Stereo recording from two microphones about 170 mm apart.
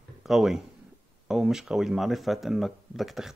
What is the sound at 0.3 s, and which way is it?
Speech, centre (ahead or behind).